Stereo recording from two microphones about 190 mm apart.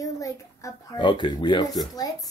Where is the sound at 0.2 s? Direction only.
15° left (ahead or behind).